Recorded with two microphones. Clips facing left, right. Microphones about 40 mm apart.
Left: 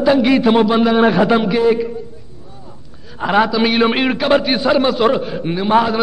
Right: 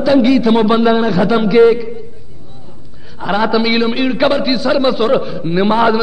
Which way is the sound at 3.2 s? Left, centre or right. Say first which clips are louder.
Right 1 dB; left.